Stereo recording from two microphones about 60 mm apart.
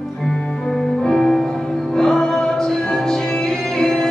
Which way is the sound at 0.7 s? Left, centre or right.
Centre.